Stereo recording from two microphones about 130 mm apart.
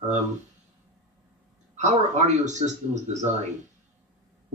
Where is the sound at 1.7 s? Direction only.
65° right (ahead or behind).